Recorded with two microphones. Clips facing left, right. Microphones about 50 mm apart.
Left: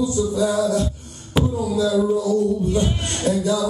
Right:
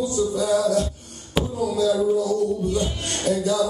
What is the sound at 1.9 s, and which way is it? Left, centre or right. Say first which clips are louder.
Speech: left 2 dB; centre.